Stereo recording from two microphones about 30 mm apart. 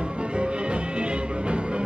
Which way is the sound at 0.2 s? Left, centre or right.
Right.